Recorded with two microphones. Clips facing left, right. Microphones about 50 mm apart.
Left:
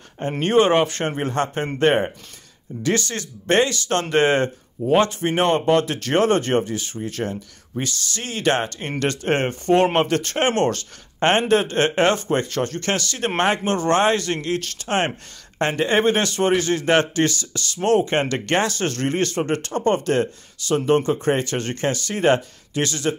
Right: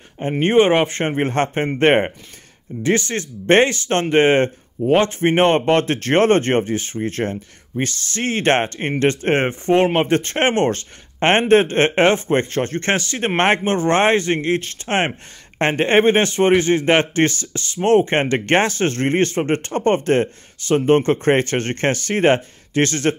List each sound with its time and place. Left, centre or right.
0.2 s speech: right
1.2 s speech: right
21.1 s speech: right